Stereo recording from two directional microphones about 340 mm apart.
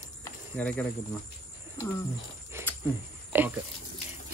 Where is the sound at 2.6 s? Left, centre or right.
Centre.